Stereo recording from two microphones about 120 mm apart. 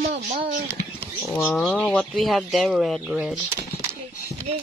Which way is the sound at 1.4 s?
10° left (ahead or behind).